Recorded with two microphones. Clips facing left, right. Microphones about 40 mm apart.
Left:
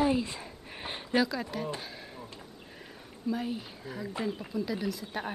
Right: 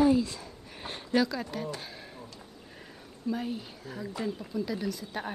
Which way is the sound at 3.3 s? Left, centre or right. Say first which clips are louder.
Even; centre.